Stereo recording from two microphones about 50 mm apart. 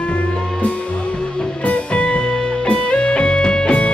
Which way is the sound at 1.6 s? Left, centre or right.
Left.